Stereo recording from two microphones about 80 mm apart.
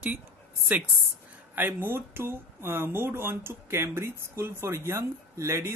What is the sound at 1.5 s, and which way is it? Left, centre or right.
Speech, right.